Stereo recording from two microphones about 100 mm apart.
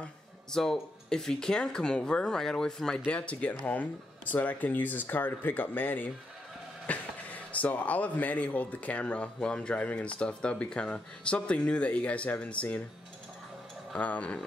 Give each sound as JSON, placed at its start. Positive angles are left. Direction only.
{"t": 0.0, "sound": "speech", "side_deg": 5}
{"t": 13.9, "sound": "speech", "side_deg": 15}